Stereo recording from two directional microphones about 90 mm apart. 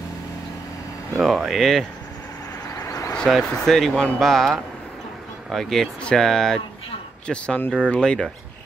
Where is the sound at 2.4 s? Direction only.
35° left (ahead or behind).